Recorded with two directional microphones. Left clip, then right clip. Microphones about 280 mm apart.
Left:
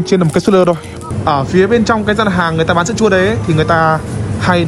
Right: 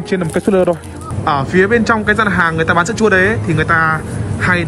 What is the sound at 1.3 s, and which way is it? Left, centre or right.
Speech, centre.